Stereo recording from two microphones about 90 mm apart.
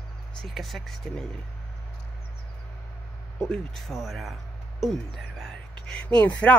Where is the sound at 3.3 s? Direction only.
5° left (ahead or behind).